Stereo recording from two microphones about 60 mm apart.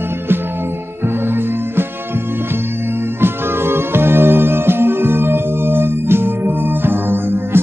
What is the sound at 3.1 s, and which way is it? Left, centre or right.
Music, right.